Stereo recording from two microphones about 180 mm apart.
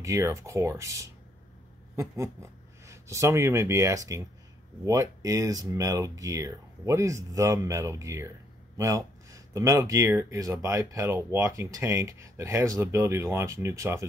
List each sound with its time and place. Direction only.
0.0 s speech: 15° right (ahead or behind)